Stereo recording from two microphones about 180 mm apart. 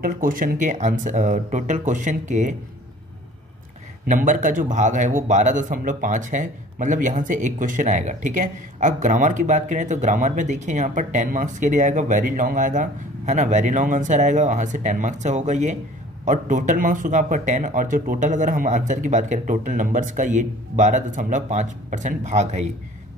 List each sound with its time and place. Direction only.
0.0 s a man's voice: 50° right (ahead or behind)
4.1 s a man's voice: 45° right (ahead or behind)